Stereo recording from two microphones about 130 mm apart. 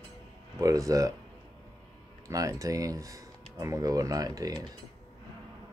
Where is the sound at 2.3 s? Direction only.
25° right (ahead or behind).